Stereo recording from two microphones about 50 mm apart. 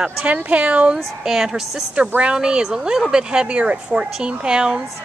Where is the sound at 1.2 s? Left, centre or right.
Centre.